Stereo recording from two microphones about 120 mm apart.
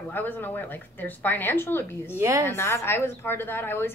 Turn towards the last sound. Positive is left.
turn(degrees=20)  # may be behind; listen again after turning